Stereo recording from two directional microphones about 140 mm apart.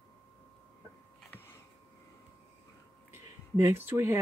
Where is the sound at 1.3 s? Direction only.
15° left (ahead or behind).